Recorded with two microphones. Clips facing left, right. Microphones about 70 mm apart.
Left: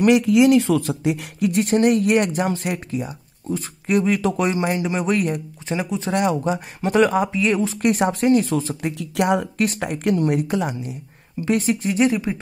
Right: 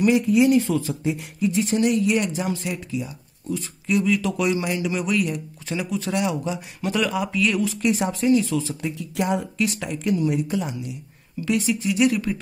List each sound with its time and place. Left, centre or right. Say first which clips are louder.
0.0 s speech: left 3 dB; left
3.1 s speech: left 2 dB; left
5.7 s speech: left 2 dB; left
6.1 s speech: left 6 dB; left
7.8 s speech: left 3 dB; left
8.9 s speech: left 5 dB; left
12.1 s speech: left 1 dB; left